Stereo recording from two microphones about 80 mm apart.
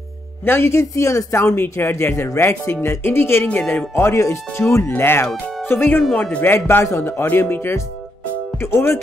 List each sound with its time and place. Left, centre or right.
0.5 s speech: left
3.9 s speech: left